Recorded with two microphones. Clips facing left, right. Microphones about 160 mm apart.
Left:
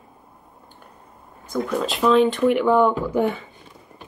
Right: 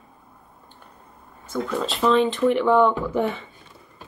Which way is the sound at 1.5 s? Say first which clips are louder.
Left 2 dB; 15° left (ahead or behind).